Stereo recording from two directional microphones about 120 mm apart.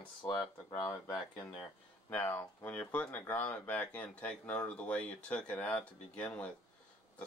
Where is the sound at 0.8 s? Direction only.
40° left (ahead or behind).